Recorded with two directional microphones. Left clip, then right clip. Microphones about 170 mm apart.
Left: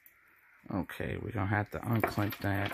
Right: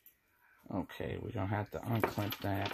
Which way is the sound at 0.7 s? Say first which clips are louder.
Left 3 dB; 55° left (ahead or behind).